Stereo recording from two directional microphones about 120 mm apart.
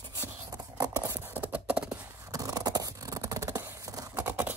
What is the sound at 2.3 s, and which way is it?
Scratch, 30° right (ahead or behind).